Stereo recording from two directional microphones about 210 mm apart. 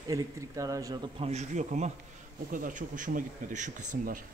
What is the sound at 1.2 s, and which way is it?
Speech, 35° right (ahead or behind).